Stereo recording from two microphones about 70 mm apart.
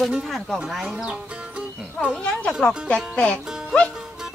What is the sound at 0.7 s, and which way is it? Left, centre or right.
Speech, centre.